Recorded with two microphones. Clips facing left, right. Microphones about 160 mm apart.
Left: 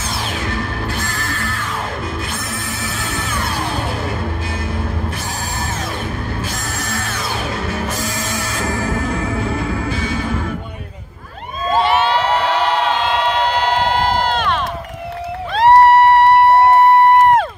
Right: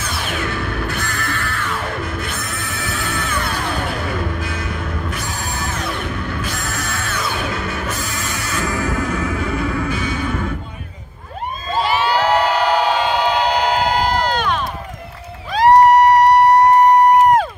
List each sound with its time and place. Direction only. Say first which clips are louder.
1.0 s music: even; 60° right (ahead or behind)
2.9 s music: right 3 dB; 60° right (ahead or behind)
6.8 s music: even; 60° right (ahead or behind)
11.8 s crowd: even; centre (ahead or behind)